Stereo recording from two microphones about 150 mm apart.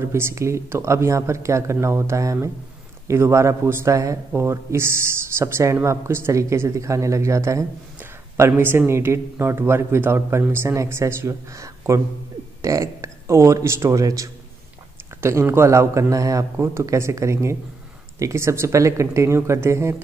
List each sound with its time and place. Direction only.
0.0 s a woman's voice: 20° right (ahead or behind)